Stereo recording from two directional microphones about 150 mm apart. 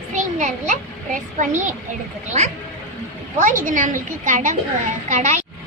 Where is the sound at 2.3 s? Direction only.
50° right (ahead or behind).